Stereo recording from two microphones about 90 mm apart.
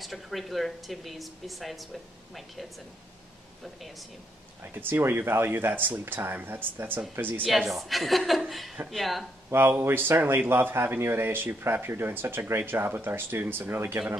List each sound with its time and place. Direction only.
0.0 s speech: centre (ahead or behind)
4.7 s speech: 25° right (ahead or behind)
7.7 s speech: centre (ahead or behind)
9.5 s speech: 25° right (ahead or behind)